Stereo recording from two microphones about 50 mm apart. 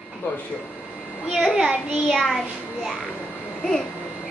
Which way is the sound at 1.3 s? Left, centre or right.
Centre.